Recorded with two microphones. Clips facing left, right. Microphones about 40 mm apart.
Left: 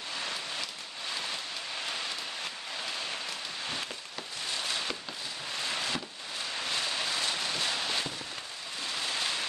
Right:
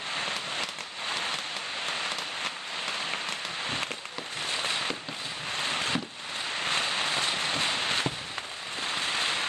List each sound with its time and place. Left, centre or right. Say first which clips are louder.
0.1 s vehicle: right 4 dB; right
3.1 s rain on surface: right 4 dB; right
4.5 s a sound: right 3 dB; right